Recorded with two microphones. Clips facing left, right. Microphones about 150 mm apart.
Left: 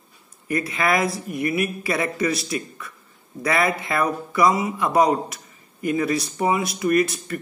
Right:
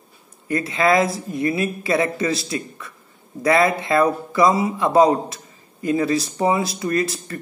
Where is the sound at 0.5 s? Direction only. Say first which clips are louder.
Right 4 dB; 25° right (ahead or behind).